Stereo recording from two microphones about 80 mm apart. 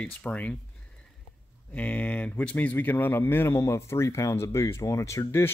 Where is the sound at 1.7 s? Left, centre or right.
Centre.